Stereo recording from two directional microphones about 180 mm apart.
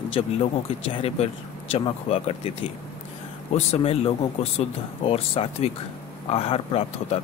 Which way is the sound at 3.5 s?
35° left (ahead or behind).